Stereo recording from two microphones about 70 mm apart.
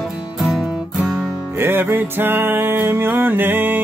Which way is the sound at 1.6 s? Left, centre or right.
Right.